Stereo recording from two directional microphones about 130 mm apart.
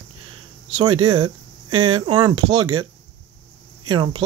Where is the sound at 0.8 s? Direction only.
35° right (ahead or behind).